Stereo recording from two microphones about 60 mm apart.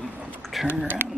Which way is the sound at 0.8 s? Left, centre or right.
Right.